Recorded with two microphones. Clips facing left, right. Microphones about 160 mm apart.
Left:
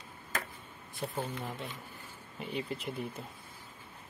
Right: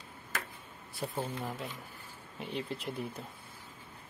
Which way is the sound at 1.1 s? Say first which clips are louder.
Right 1 dB; 5° right (ahead or behind).